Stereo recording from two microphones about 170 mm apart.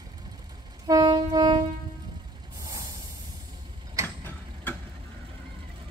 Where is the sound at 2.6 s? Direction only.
20° right (ahead or behind).